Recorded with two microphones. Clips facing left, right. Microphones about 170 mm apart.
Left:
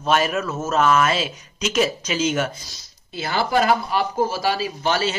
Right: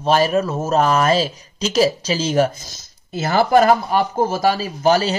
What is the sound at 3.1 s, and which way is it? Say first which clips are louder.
Speech: right 6 dB; 45° right (ahead or behind).